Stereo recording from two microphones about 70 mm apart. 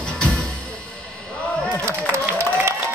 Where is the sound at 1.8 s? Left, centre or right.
Right.